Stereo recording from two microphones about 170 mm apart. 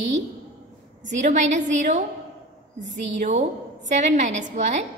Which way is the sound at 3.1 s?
45° right (ahead or behind).